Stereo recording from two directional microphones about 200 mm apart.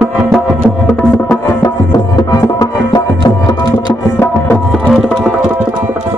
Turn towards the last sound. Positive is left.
turn(degrees=10)  # may be behind; listen again after turning